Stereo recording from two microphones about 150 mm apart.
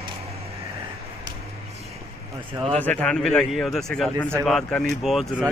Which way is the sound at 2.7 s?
10° left (ahead or behind).